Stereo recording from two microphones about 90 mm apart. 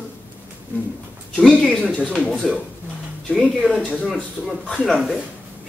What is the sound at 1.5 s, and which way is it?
Speech, 10° left (ahead or behind).